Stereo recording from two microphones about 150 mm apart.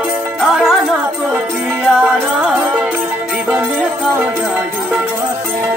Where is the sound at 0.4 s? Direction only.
Centre (ahead or behind).